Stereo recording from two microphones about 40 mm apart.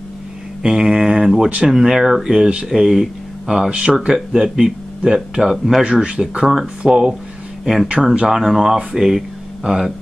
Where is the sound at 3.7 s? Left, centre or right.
Right.